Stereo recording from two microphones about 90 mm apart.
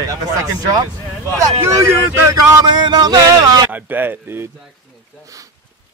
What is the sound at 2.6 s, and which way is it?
Speech, 55° right (ahead or behind).